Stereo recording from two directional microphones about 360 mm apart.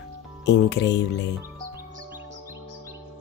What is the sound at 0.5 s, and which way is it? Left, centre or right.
Speech, left.